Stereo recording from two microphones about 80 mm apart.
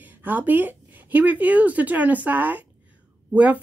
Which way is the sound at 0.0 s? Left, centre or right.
Right.